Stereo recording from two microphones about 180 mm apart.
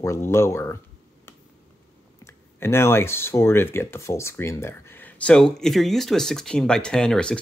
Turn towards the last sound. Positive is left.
turn(degrees=5)  # may be behind; listen again after turning